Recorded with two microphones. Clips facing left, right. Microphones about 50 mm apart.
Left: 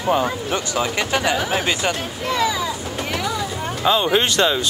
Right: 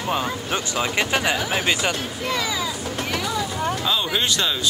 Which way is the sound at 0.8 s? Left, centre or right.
Centre.